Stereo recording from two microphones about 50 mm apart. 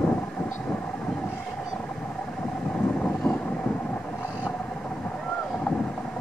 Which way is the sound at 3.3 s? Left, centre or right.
Centre.